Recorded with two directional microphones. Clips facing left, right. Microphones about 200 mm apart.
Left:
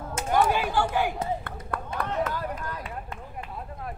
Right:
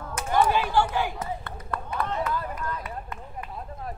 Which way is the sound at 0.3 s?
50° left (ahead or behind).